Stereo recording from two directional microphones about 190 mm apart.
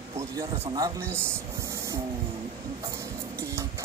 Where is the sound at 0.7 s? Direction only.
15° right (ahead or behind).